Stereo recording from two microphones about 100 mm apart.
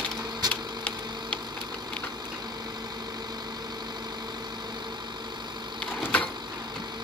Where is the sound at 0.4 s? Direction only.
40° right (ahead or behind).